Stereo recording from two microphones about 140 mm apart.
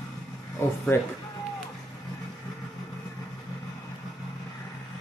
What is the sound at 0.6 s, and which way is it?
Speech, 20° left (ahead or behind).